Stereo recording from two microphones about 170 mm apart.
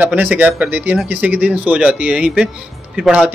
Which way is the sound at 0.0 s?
10° right (ahead or behind).